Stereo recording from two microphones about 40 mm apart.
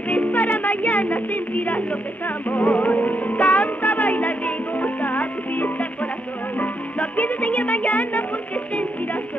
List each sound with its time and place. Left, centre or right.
0.3 s music: left